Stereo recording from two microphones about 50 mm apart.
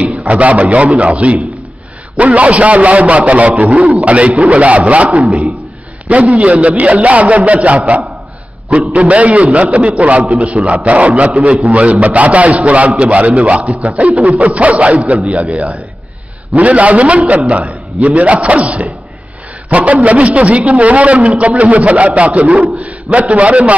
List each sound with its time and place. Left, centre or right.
0.3 s a man's voice: right